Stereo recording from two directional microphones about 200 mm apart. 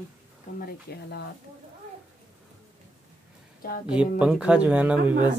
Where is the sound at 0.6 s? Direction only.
50° left (ahead or behind).